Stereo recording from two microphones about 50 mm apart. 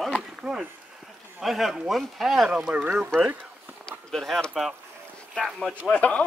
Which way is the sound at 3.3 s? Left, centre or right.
Right.